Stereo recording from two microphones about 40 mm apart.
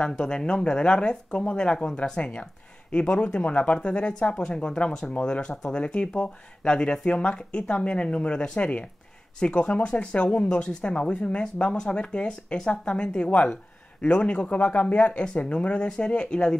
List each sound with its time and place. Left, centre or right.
0.0 s speech: left